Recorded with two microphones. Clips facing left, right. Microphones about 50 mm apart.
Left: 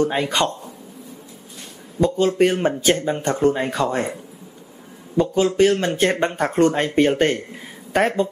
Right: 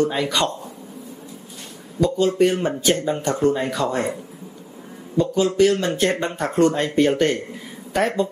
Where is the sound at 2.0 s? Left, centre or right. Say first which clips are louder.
Left 1 dB; left.